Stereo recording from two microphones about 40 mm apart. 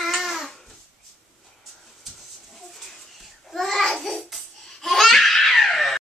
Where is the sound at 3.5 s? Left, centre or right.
Centre.